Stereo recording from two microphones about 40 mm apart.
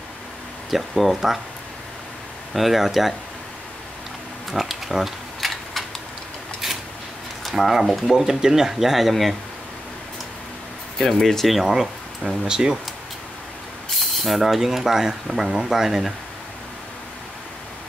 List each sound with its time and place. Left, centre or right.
0.7 s speech: centre
2.5 s speech: centre
4.5 s a sound: centre
7.5 s speech: centre
8.3 s speech: centre
11.0 s speech: centre
11.6 s speech: centre
14.1 s speech: centre